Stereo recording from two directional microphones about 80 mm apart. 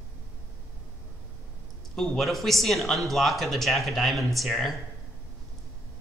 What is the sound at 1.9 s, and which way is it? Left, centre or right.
Speech, centre.